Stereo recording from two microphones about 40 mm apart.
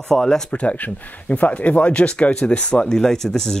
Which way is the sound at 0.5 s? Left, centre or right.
Left.